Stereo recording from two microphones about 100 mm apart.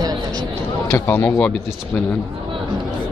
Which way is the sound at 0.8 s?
25° left (ahead or behind).